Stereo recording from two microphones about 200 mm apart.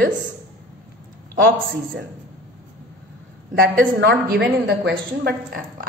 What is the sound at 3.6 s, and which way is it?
A woman's voice, 50° right (ahead or behind).